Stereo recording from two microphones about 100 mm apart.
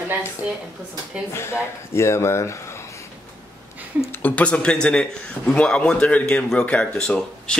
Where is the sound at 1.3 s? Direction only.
25° left (ahead or behind).